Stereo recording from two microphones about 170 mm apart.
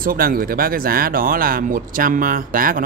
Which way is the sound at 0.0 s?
55° right (ahead or behind).